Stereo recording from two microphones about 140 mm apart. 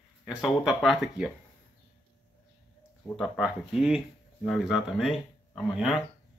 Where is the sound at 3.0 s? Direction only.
Centre (ahead or behind).